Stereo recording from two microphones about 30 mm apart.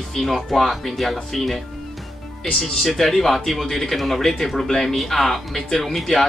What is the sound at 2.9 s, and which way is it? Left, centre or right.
Speech, centre.